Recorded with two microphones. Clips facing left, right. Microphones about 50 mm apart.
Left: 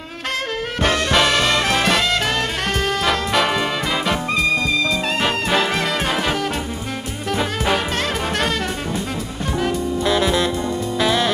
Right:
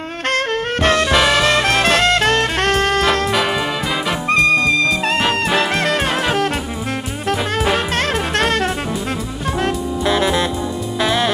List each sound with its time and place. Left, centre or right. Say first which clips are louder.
0.3 s music: right 5 dB; right
1.1 s music: left 1 dB; centre
1.6 s saxophone: right 3 dB; right
3.3 s music: right 1 dB; centre
4.3 s music: right 8 dB; right
6.3 s saxophone: right 4 dB; right
7.2 s music: right 2 dB; right
10.0 s music: right 2 dB; centre